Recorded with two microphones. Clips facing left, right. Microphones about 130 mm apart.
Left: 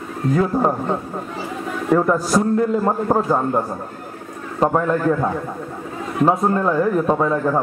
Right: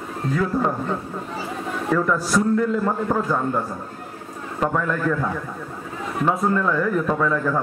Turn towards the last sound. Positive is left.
turn(degrees=30)  # may be behind; listen again after turning